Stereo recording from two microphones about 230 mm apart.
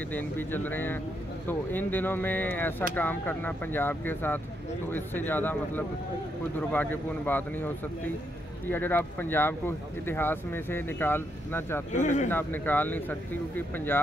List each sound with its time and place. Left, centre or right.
0.1 s speech: centre
11.9 s speech: left
12.3 s speech: centre